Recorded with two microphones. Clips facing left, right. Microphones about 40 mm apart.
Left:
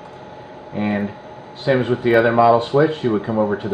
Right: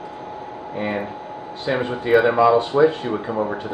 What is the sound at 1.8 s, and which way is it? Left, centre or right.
Speech, centre.